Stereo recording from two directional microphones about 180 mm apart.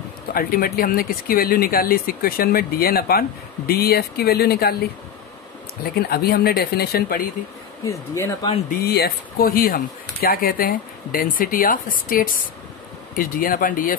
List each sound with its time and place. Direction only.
0.3 s speech: 55° left (ahead or behind)
5.9 s speech: 60° left (ahead or behind)
7.8 s speech: 15° left (ahead or behind)
8.6 s speech: 60° left (ahead or behind)